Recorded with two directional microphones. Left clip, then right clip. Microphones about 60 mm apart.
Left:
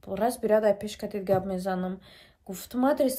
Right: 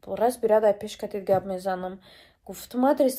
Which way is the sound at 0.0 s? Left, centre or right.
Left.